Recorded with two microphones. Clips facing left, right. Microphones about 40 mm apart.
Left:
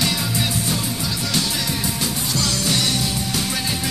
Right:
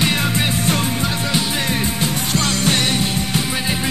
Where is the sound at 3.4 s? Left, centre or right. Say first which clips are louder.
Right 3 dB; right.